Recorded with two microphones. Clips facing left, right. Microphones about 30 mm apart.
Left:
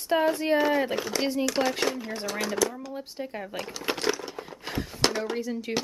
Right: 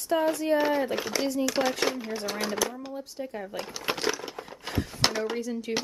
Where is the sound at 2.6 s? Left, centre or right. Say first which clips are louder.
Left 5 dB; centre.